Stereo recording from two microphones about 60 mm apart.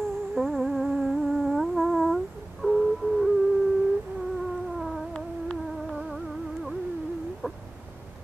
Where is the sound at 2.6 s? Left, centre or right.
Centre.